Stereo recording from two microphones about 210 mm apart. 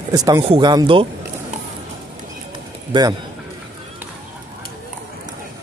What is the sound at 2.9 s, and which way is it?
Speech, 20° right (ahead or behind).